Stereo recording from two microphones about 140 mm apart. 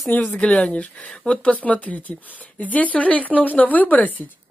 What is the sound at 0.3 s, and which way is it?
Speech, 5° left (ahead or behind).